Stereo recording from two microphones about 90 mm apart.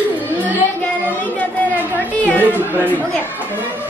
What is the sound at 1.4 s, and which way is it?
Chatter, 15° left (ahead or behind).